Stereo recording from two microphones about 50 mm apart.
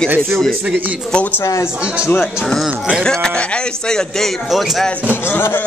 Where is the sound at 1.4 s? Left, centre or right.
Left.